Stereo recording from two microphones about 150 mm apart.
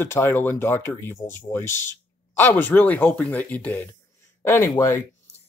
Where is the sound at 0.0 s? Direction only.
15° left (ahead or behind).